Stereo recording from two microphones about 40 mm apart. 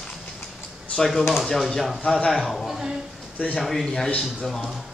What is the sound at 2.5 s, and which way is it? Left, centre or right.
Speech, centre.